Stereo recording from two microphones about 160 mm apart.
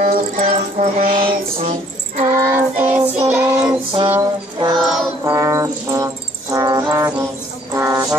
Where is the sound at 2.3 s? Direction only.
15° right (ahead or behind).